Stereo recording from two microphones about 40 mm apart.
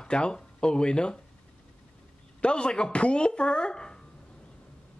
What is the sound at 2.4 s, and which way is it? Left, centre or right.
Speech, left.